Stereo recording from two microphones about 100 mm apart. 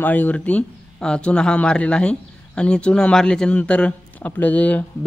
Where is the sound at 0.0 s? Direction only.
15° left (ahead or behind).